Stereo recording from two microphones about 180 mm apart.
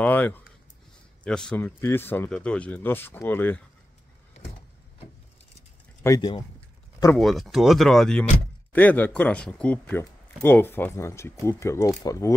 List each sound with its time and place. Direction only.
0.0 s a man's voice: 10° left (ahead or behind)
6.0 s speech: 20° left (ahead or behind)
7.2 s a man's voice: centre (ahead or behind); by 12.4 s 20° left (ahead or behind)